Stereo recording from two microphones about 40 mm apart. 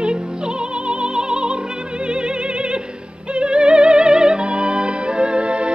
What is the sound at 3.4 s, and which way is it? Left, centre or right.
Music, right.